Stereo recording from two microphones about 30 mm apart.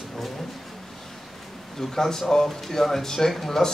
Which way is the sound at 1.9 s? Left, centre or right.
Centre.